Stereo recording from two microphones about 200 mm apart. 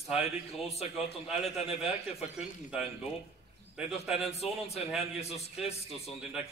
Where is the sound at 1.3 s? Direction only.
Centre (ahead or behind).